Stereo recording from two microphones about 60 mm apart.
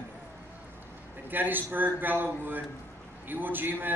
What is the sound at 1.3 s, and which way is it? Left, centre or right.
A man's voice, right.